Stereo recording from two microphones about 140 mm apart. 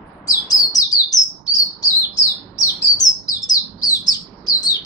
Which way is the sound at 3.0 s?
25° left (ahead or behind).